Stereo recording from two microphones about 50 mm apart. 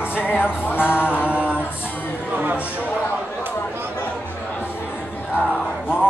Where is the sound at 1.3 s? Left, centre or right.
Right.